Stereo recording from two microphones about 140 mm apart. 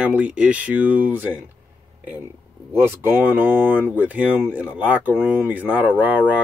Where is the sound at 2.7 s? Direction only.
15° right (ahead or behind).